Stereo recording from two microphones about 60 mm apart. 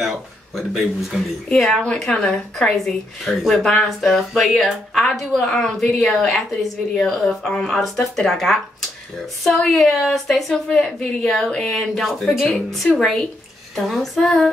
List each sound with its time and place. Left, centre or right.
0.0 s speech: centre
1.5 s speech: centre
5.9 s speech: centre
6.1 s speech: centre